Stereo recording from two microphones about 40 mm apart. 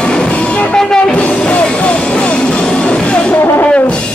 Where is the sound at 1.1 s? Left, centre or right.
Left.